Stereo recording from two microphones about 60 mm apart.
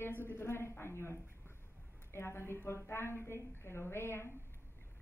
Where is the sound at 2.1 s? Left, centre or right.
Left.